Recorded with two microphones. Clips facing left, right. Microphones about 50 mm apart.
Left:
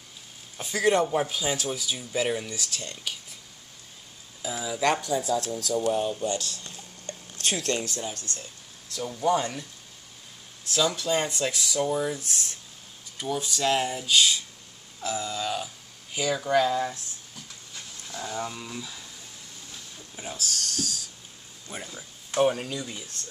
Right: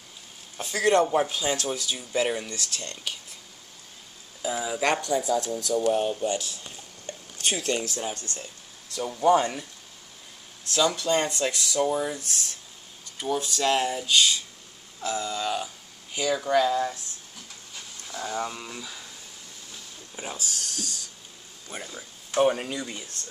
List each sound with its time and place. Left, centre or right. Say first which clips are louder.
0.6 s a man's voice: right 1 dB; centre
4.4 s a sound: right 4 dB; centre
5.1 s speech: right 2 dB; right
5.9 s speech: right 2 dB; right
8.2 s speech: right 1 dB; right
8.9 s speech: right 4 dB; centre
10.7 s speech: right 2 dB; centre
12.2 s speech: even; centre
13.2 s speech: right 1 dB; centre
18.0 s speech: right 2 dB; centre
20.2 s speech: left 1 dB; centre